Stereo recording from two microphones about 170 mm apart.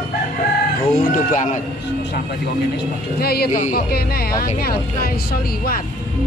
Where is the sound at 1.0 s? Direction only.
50° left (ahead or behind).